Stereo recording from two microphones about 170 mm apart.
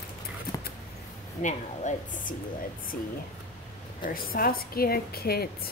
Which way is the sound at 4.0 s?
60° left (ahead or behind).